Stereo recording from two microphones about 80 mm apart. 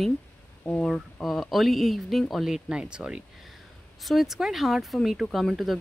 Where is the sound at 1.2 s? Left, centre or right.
Centre.